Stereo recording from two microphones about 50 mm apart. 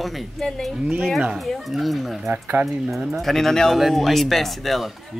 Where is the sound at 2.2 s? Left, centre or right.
Right.